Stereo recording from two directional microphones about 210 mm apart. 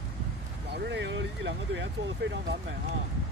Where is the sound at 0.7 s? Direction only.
55° right (ahead or behind).